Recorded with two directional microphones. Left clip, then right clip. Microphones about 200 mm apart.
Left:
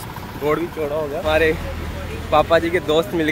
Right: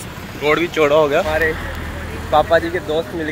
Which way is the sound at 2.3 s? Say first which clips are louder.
Right 1 dB; 10° left (ahead or behind).